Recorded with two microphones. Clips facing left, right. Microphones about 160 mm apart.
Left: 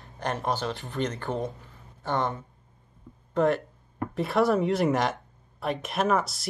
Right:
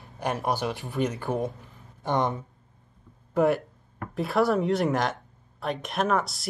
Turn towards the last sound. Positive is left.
turn(degrees=0)  # may be behind; listen again after turning